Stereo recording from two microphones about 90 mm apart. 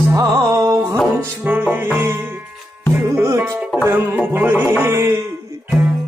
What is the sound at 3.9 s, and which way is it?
Music, 25° right (ahead or behind).